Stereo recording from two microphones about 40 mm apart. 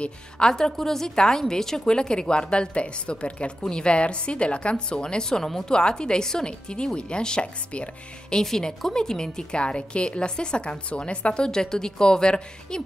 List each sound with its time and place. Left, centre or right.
0.4 s a woman's voice: centre
8.4 s a woman's voice: centre